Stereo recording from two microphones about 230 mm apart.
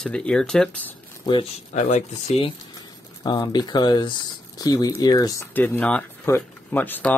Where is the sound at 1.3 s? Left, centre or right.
Left.